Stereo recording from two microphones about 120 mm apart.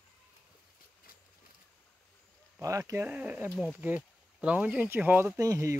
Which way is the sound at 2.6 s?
25° right (ahead or behind).